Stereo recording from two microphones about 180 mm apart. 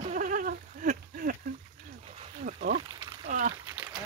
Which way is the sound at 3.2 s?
40° right (ahead or behind).